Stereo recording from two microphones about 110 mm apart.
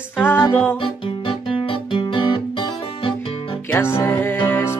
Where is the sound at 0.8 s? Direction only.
55° left (ahead or behind).